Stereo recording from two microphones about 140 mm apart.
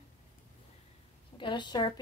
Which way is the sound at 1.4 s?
35° left (ahead or behind).